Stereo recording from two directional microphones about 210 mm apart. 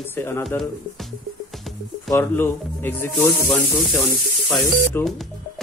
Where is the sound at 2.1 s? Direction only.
10° left (ahead or behind).